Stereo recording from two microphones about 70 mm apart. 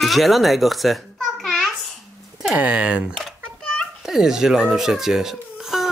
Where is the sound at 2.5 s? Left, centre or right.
Centre.